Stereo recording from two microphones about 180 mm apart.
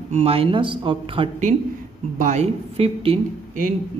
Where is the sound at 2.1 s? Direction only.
40° right (ahead or behind).